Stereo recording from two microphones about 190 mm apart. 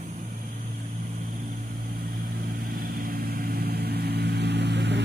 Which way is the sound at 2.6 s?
50° right (ahead or behind).